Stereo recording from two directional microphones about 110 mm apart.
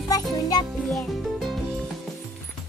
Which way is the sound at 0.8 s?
Centre (ahead or behind).